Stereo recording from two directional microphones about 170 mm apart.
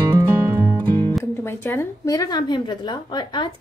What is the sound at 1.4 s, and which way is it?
Speech, 15° left (ahead or behind).